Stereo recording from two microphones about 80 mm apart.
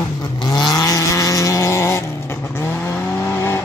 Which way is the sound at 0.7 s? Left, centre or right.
Left.